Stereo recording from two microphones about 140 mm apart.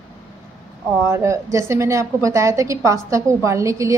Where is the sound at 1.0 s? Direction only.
20° right (ahead or behind).